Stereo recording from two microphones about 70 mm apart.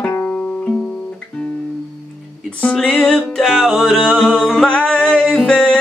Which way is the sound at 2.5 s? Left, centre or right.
Centre.